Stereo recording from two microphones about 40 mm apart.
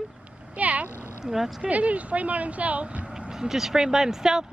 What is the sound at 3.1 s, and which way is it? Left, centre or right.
Speech, centre.